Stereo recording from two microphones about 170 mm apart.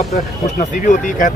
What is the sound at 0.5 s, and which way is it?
Speech, 50° left (ahead or behind).